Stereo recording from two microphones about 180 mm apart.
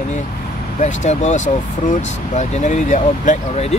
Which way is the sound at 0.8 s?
40° left (ahead or behind).